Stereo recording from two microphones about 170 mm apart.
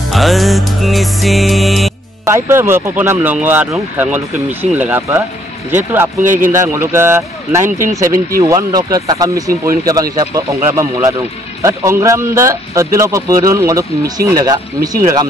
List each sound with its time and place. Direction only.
0.1 s music: centre (ahead or behind)
2.2 s speech: 15° right (ahead or behind)
6.2 s a man's voice: 50° right (ahead or behind)
6.5 s speech: 15° right (ahead or behind)